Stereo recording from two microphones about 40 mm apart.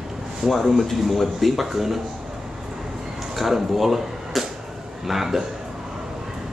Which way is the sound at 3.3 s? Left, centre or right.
Centre.